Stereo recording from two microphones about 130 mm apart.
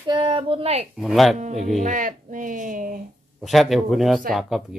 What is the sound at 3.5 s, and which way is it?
Speech, centre (ahead or behind).